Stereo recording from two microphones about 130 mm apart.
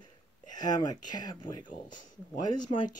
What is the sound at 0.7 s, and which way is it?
Speech, 30° left (ahead or behind).